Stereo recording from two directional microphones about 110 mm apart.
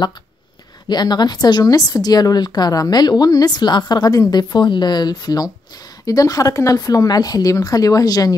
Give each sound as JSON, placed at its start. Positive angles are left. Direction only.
{"t": 0.8, "sound": "a woman's voice", "side_deg": 40}